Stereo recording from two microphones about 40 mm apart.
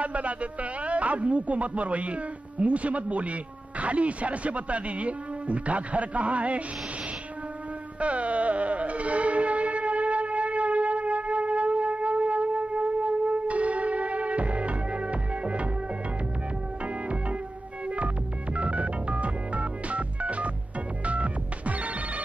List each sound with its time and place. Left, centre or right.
0.0 s speech: right
8.0 s music: right
16.8 s music: right
21.0 s telephone bell ringing: right